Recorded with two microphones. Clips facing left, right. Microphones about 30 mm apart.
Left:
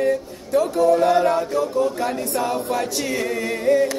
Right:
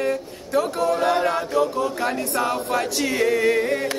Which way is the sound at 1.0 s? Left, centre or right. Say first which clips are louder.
Left 3 dB; right.